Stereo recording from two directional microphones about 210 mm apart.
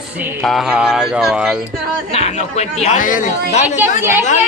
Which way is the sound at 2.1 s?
30° left (ahead or behind).